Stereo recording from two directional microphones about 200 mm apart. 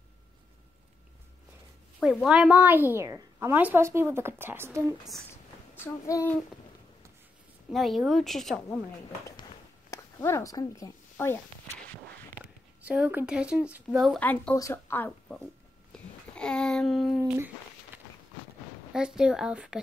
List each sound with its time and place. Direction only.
2.0 s a woman's voice: centre (ahead or behind)
5.8 s a child's voice: 15° left (ahead or behind)
7.7 s speech: centre (ahead or behind)
9.4 s a sound: 15° left (ahead or behind)
12.8 s a woman's voice: 5° right (ahead or behind)
15.9 s a sound: 5° left (ahead or behind)
18.9 s speech: 5° right (ahead or behind)